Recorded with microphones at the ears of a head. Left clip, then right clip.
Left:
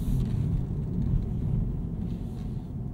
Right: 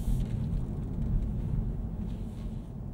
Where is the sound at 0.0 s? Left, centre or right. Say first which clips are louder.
Left 5 dB; left.